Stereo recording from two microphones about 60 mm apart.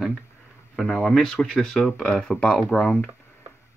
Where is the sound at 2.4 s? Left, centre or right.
Centre.